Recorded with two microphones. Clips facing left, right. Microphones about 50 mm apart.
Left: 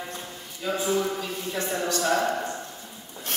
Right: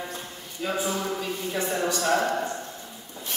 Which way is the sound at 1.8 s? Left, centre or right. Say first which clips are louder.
Left 1 dB; centre.